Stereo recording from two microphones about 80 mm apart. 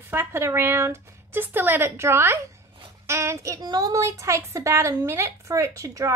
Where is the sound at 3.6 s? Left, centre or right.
Right.